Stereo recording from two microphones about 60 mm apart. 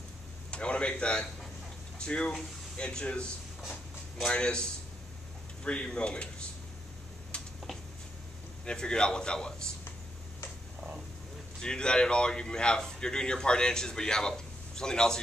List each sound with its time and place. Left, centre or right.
0.5 s a sound: centre
2.0 s speech: centre
4.3 s speech: centre
7.3 s a sound: centre
8.6 s speech: centre
11.6 s speech: centre